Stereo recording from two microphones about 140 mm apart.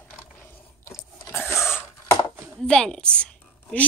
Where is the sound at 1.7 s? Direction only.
20° left (ahead or behind).